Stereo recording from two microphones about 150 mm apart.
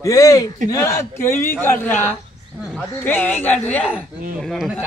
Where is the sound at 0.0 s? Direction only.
20° left (ahead or behind).